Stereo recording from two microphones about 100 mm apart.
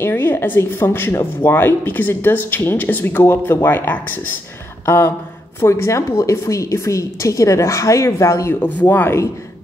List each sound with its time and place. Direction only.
0.0 s speech: 20° left (ahead or behind)
4.8 s a sound: 25° left (ahead or behind)
5.6 s a woman's voice: 30° left (ahead or behind)
8.5 s speech: 15° left (ahead or behind)